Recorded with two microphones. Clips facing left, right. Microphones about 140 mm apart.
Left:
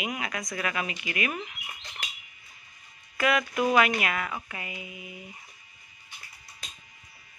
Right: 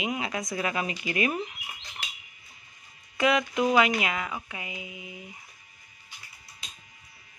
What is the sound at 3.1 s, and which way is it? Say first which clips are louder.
Speech: right 2 dB; 20° right (ahead or behind).